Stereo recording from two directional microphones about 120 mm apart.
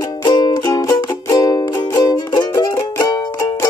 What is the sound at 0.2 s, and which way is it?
Music, 40° left (ahead or behind).